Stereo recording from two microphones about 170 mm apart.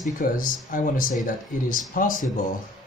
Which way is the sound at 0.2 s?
55° left (ahead or behind).